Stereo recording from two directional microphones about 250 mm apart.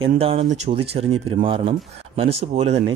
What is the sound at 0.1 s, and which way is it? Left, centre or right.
Speech, right.